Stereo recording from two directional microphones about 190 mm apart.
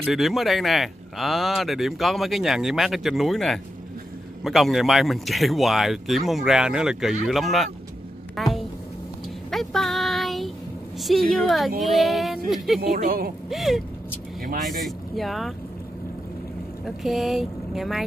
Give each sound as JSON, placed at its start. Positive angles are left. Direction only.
{"t": 0.0, "sound": "a woman's voice", "side_deg": 0}
{"t": 9.5, "sound": "a sound", "side_deg": 0}
{"t": 11.0, "sound": "speech", "side_deg": 0}
{"t": 12.8, "sound": "speech", "side_deg": -50}
{"t": 13.5, "sound": "speech", "side_deg": 0}
{"t": 16.8, "sound": "speech", "side_deg": 0}